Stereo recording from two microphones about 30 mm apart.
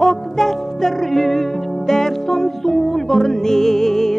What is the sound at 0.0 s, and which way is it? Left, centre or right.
Music, centre.